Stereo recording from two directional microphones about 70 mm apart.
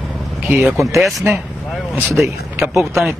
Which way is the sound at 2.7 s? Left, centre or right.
Centre.